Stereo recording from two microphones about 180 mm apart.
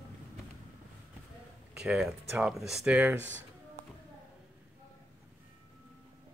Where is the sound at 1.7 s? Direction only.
5° right (ahead or behind).